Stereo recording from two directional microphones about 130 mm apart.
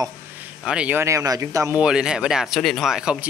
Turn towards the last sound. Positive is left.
turn(degrees=-5)  # may be behind; listen again after turning